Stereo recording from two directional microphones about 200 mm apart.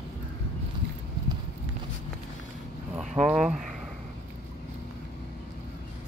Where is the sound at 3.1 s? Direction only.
35° right (ahead or behind).